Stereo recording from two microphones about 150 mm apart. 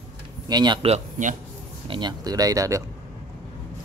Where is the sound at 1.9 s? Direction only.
30° right (ahead or behind).